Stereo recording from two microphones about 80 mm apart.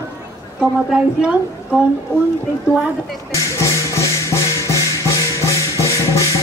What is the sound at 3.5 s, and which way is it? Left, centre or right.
Music, left.